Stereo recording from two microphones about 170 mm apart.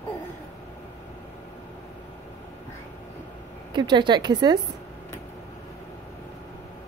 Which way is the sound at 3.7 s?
25° right (ahead or behind).